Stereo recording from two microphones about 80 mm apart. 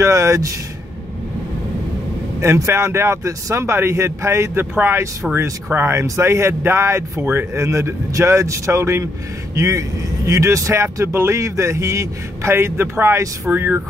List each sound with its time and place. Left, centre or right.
0.0 s speech: right
2.4 s speech: right